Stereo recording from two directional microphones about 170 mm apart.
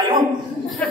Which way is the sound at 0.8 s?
10° left (ahead or behind).